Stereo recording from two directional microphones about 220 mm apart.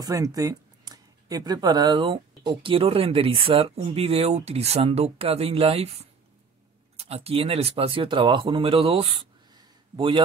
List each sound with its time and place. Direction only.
0.0 s speech: 15° right (ahead or behind)
7.0 s speech: 25° right (ahead or behind)